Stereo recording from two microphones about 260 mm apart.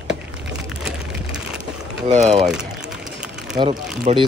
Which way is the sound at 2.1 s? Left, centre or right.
Right.